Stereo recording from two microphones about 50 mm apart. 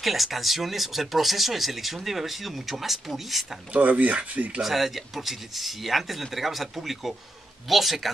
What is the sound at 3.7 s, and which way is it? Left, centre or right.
Speech, right.